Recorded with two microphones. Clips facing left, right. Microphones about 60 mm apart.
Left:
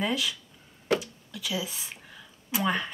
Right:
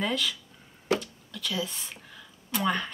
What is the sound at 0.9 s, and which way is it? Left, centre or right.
Speech, centre.